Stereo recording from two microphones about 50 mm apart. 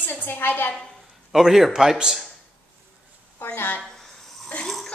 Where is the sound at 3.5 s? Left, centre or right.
Left.